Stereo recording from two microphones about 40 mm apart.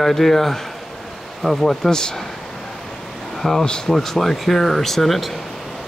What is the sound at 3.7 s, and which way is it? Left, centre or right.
Speech, centre.